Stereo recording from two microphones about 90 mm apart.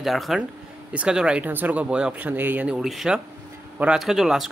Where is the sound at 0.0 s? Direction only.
Centre (ahead or behind); by 2.8 s 15° right (ahead or behind).